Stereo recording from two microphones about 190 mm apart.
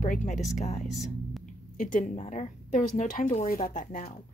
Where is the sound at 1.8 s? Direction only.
45° left (ahead or behind).